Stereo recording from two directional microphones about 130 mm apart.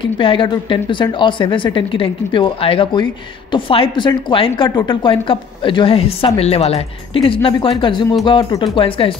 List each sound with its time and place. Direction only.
0.0 s speech: 40° left (ahead or behind)